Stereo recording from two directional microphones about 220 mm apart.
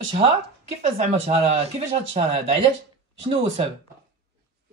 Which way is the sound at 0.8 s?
30° right (ahead or behind).